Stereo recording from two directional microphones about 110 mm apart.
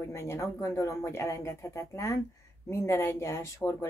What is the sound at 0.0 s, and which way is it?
Speech, 25° left (ahead or behind).